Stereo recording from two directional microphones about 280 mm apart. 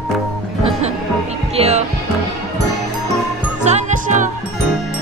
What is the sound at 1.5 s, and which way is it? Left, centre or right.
Music, right.